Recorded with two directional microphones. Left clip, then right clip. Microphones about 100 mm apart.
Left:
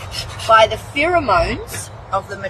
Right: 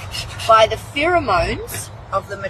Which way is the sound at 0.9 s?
25° right (ahead or behind).